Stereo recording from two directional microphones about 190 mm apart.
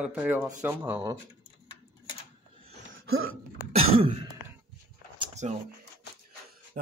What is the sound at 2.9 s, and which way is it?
Hiccup, 90° right.